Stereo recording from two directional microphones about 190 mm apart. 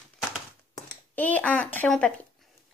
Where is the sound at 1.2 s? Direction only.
5° left (ahead or behind).